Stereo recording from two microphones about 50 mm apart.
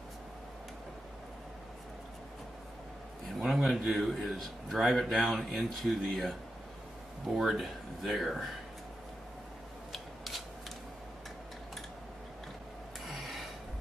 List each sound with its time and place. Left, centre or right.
3.3 s a man's voice: centre
7.3 s a man's voice: centre
9.9 s scissors: centre
13.1 s a sound: centre